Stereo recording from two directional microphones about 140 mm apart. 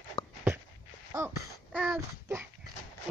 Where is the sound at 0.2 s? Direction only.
35° left (ahead or behind).